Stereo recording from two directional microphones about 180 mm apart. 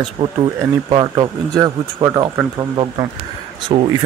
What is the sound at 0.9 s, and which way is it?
Speech, 25° right (ahead or behind).